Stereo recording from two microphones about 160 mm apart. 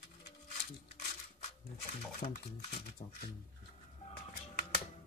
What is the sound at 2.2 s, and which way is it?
Speech, 70° left (ahead or behind).